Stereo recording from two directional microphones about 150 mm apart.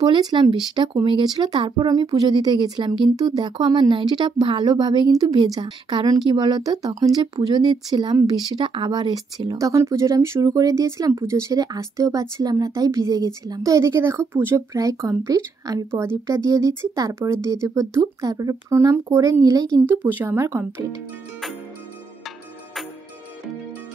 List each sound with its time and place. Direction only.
0.0 s speech: 30° right (ahead or behind)
19.9 s speech: 10° right (ahead or behind)